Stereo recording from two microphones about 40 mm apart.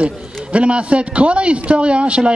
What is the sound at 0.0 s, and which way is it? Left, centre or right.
A man's voice, right.